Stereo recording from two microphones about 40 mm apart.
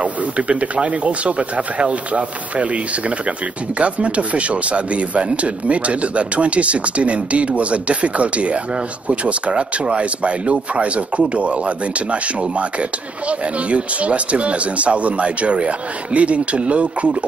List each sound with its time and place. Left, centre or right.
0.0 s a man's voice: right